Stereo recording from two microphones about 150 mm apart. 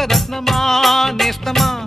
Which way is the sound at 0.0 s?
Centre (ahead or behind).